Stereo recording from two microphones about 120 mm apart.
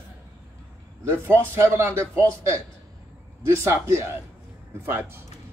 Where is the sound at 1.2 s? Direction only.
20° right (ahead or behind).